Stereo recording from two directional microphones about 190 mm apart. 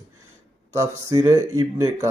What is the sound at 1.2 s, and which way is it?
Speech, 15° right (ahead or behind).